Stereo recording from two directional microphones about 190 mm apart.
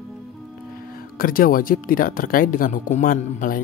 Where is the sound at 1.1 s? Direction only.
50° left (ahead or behind).